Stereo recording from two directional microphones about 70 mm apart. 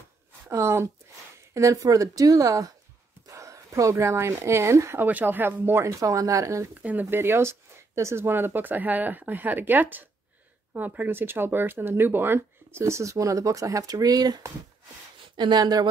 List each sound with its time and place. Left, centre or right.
0.5 s speech: right
3.3 s a sound: right
3.9 s speech: right
5.0 s speech: right
5.9 s speech: right
6.7 s speech: right
7.1 s speech: right
15.3 s speech: right